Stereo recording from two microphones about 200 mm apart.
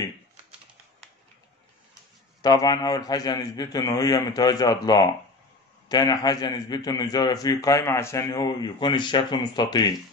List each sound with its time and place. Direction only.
2.4 s a man's voice: 20° left (ahead or behind)